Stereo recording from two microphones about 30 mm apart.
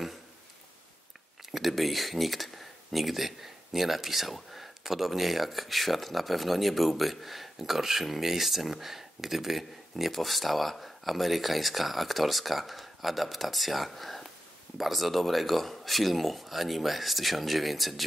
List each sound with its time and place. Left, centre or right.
1.5 s speech: centre